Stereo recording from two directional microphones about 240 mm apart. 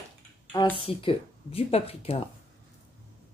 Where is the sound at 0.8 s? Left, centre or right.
Left.